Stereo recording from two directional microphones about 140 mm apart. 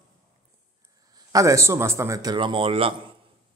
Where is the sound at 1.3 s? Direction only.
25° right (ahead or behind); by 2.9 s 40° right (ahead or behind).